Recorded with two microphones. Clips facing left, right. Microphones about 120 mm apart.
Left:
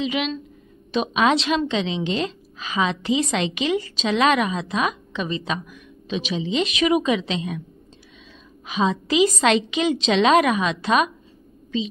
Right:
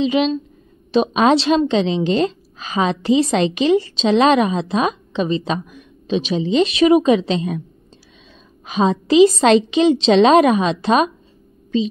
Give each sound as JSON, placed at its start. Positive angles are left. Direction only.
{"t": 0.0, "sound": "a woman's voice", "side_deg": -30}
{"t": 8.6, "sound": "a woman's voice", "side_deg": -40}